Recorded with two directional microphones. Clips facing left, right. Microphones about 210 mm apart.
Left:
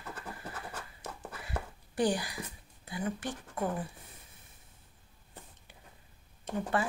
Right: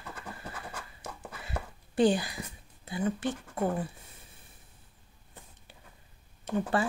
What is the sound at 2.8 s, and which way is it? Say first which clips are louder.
Speech: right 5 dB; 25° right (ahead or behind).